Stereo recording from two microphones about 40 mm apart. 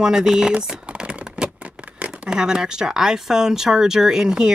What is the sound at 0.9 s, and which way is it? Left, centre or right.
Typing, right.